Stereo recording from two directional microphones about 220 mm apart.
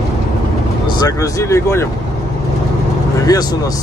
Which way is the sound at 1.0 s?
15° left (ahead or behind).